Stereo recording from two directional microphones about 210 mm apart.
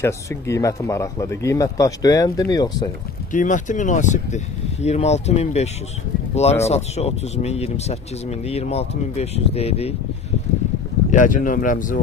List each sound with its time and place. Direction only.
0.0 s speech: 15° left (ahead or behind)
3.3 s speech: 35° left (ahead or behind)
11.1 s speech: 40° left (ahead or behind)